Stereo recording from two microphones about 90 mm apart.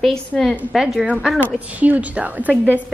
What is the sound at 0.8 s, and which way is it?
Speech, 5° right (ahead or behind).